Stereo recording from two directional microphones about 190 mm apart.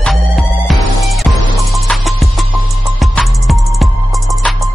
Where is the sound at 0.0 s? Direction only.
Centre (ahead or behind).